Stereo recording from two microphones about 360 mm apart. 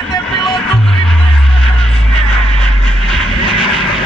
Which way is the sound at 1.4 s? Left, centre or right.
Centre.